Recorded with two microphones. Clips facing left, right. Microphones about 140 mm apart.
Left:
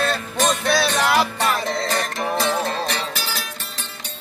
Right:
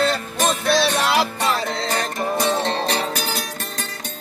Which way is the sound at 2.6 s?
35° right (ahead or behind).